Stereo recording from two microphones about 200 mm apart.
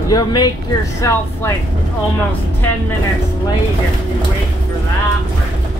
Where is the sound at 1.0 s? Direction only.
15° left (ahead or behind).